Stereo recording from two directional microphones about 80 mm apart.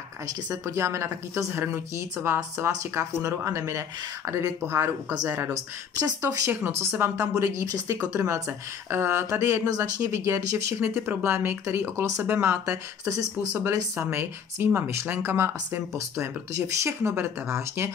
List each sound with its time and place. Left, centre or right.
0.5 s speech: right
5.5 s speech: right
6.5 s speech: right